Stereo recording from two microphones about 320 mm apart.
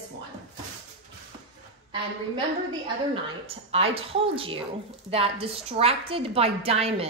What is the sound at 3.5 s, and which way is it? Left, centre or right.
A woman's voice, centre.